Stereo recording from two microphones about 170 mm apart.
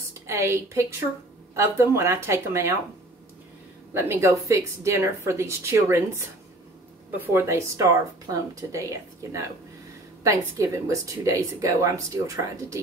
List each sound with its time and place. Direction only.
0.3 s speech: 15° right (ahead or behind)
3.9 s speech: 15° right (ahead or behind)